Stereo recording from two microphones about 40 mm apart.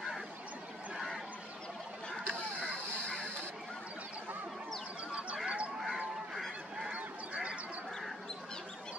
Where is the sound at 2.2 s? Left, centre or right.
Left.